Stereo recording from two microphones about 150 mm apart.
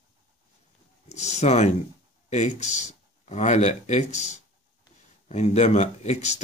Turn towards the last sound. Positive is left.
turn(degrees=50)  # may be behind; listen again after turning